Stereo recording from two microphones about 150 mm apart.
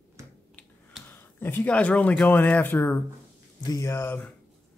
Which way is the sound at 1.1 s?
15° left (ahead or behind).